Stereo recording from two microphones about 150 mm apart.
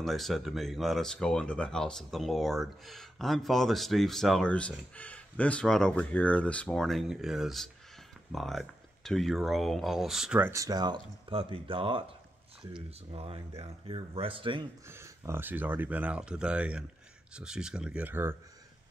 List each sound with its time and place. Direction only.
0.0 s speech: centre (ahead or behind)
10.5 s speech: 25° right (ahead or behind)
14.9 s speech: 20° right (ahead or behind)